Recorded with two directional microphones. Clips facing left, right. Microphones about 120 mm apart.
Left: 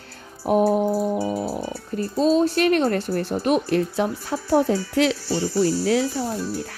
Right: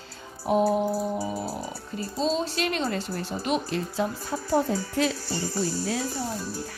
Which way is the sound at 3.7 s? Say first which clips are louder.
Left 6 dB; 65° left (ahead or behind).